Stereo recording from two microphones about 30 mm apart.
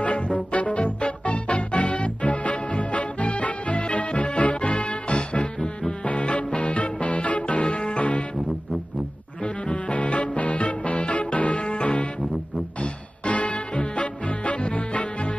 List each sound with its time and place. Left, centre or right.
0.0 s music: left
6.0 s music: left
8.0 s music: left
9.4 s music: left
11.5 s music: left
13.2 s music: left